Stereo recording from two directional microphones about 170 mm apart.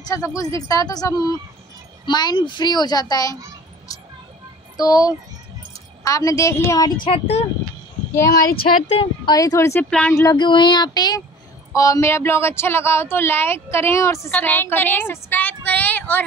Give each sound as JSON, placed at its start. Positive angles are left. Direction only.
{"t": 0.0, "sound": "a child's voice", "side_deg": 20}
{"t": 4.7, "sound": "a child's voice", "side_deg": 20}
{"t": 7.1, "sound": "speech", "side_deg": 35}
{"t": 8.3, "sound": "speech", "side_deg": 60}
{"t": 8.8, "sound": "a child's voice", "side_deg": 30}
{"t": 9.8, "sound": "speech", "side_deg": 5}
{"t": 10.1, "sound": "a child's voice", "side_deg": 20}